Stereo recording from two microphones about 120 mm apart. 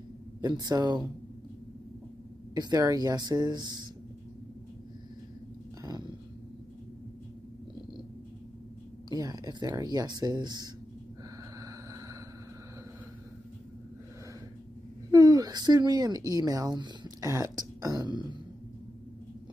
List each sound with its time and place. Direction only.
0.4 s speech: 35° right (ahead or behind)
2.5 s speech: 35° right (ahead or behind)
5.8 s dog: 30° right (ahead or behind)
9.1 s speech: 30° right (ahead or behind)
15.0 s a woman's voice: 30° right (ahead or behind)
17.2 s speech: 25° right (ahead or behind)